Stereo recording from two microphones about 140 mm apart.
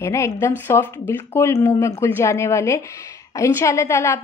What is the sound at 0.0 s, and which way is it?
A woman's voice, 20° left (ahead or behind).